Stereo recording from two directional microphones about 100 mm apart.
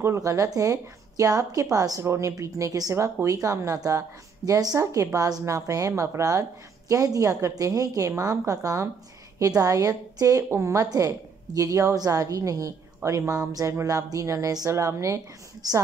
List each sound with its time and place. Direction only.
0.0 s a woman's voice: 30° right (ahead or behind)